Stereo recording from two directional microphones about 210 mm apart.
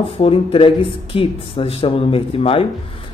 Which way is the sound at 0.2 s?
25° left (ahead or behind).